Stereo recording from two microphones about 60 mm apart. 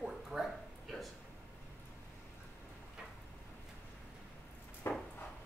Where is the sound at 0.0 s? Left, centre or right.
Centre.